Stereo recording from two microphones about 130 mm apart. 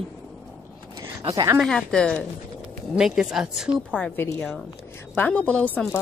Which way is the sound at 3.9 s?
10° left (ahead or behind).